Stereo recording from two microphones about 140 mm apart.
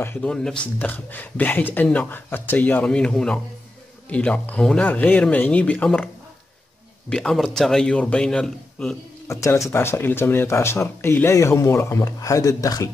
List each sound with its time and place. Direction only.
0.0 s speech: 10° left (ahead or behind)
7.1 s a man's voice: 5° left (ahead or behind)
9.3 s speech: 20° left (ahead or behind)